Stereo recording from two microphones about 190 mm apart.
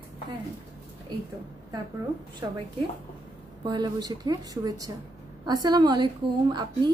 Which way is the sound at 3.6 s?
20° right (ahead or behind).